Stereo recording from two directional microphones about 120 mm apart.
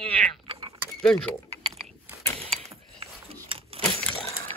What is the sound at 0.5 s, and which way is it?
Keys jangling, 50° right (ahead or behind).